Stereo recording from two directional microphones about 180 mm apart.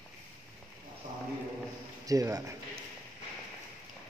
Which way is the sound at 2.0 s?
20° right (ahead or behind).